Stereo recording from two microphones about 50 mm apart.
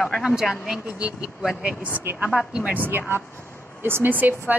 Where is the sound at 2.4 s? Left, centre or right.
Centre.